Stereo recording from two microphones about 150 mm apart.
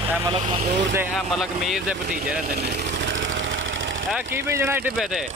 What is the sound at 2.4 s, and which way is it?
Speech, 90° right.